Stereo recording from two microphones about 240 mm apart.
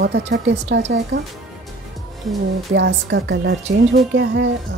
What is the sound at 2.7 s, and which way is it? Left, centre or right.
Speech, right.